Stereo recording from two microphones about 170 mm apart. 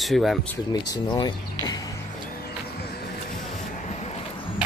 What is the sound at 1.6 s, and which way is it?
Music, 20° left (ahead or behind).